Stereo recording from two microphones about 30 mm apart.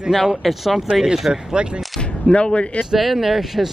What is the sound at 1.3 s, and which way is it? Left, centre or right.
Speech, right.